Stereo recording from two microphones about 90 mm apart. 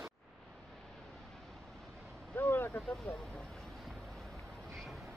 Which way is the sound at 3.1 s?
25° left (ahead or behind).